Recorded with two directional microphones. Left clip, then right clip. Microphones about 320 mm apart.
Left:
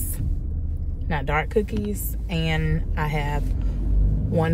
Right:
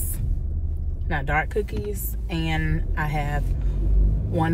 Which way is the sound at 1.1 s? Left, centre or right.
Centre.